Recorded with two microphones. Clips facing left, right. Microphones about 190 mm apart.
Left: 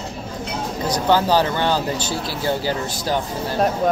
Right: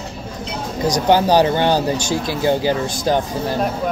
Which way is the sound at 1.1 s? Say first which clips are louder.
Right 3 dB; 15° right (ahead or behind).